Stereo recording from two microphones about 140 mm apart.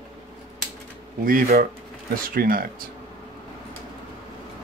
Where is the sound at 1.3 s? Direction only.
90° right.